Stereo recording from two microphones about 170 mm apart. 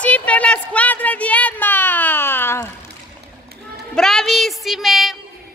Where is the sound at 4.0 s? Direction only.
5° left (ahead or behind).